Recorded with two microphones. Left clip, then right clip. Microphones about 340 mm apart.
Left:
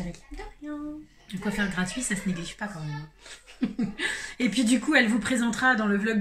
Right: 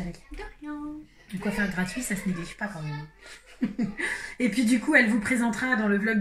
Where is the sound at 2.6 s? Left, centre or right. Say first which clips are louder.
Right 2 dB; centre.